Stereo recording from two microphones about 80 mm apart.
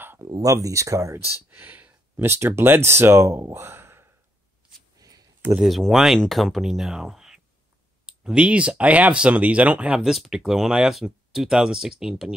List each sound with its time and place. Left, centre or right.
0.2 s speech: right
1.5 s speech: right
4.9 s a sound: right
5.6 s speech: centre